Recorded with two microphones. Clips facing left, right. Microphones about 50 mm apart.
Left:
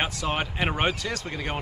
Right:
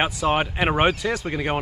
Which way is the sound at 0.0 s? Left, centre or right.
Centre.